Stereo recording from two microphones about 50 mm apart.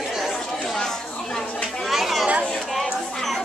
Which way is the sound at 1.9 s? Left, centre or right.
Centre.